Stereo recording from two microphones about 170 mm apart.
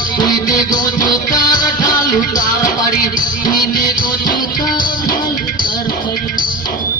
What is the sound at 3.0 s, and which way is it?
Music, 50° left (ahead or behind).